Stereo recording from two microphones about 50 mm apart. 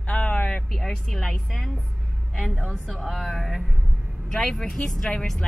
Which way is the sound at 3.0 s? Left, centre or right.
Centre.